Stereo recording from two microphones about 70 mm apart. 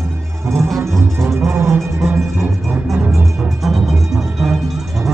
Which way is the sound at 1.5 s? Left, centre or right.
Right.